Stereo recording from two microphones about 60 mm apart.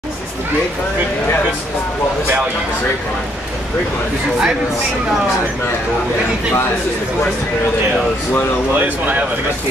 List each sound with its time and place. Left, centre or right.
8.7 s speech: right